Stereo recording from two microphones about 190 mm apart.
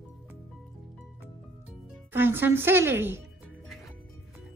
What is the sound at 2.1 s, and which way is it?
Music, 10° right (ahead or behind).